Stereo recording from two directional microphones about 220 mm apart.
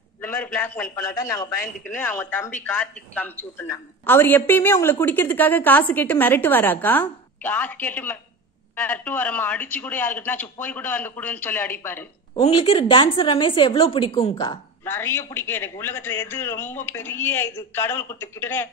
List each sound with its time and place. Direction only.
0.2 s a sound: 10° left (ahead or behind)
0.9 s a woman's voice: 15° left (ahead or behind)
12.4 s a woman's voice: 25° left (ahead or behind)
14.9 s a woman's voice: 10° left (ahead or behind)